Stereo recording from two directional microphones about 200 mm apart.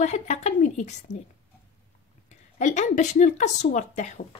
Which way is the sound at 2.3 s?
35° left (ahead or behind).